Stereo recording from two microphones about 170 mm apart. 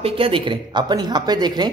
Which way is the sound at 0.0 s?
30° right (ahead or behind).